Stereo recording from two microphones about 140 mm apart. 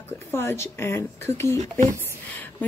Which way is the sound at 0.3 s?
15° left (ahead or behind).